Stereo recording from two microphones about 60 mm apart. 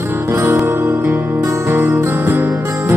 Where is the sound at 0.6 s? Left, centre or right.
Right.